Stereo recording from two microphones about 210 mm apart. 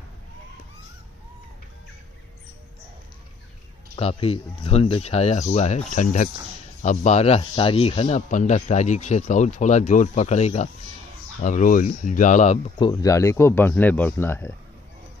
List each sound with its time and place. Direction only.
3.9 s speech: 25° left (ahead or behind)
12.7 s speech: 20° left (ahead or behind)